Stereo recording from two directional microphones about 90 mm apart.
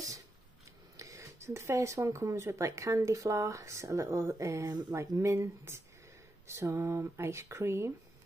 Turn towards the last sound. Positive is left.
turn(degrees=-30)  # may be behind; listen again after turning